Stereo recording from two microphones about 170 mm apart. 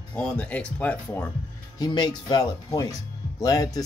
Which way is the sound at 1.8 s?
25° left (ahead or behind).